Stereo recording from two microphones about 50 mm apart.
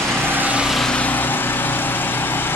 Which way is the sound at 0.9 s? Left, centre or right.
Left.